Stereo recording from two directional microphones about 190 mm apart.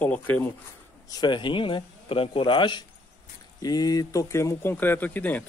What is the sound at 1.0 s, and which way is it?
Speech, 25° left (ahead or behind).